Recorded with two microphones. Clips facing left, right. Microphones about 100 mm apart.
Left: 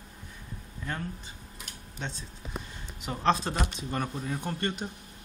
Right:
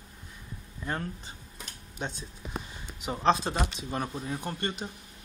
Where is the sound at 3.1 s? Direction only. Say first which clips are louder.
Right 1 dB; 5° right (ahead or behind).